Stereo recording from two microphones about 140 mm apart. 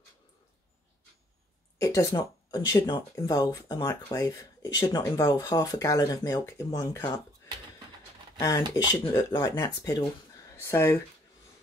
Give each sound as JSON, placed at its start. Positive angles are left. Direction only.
{"t": 1.8, "sound": "speech", "side_deg": 25}
{"t": 8.4, "sound": "speech", "side_deg": 25}